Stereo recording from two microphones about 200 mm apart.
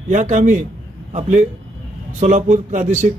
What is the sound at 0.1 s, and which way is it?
Speech, 35° right (ahead or behind).